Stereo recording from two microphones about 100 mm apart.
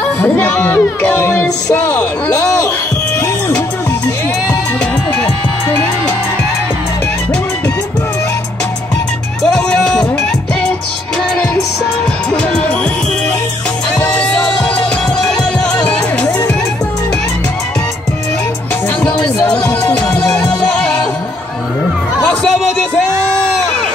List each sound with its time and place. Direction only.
0.2 s speech: 15° left (ahead or behind)
1.2 s music: 25° left (ahead or behind)
9.4 s music: 5° left (ahead or behind)
12.3 s music: 10° left (ahead or behind)
14.0 s music: 10° left (ahead or behind)
19.0 s music: 10° left (ahead or behind)